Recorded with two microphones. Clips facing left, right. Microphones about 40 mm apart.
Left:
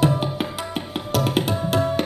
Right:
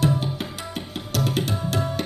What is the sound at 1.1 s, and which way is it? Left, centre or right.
Tabla, centre.